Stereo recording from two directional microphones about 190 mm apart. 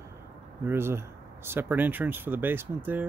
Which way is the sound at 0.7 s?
10° right (ahead or behind).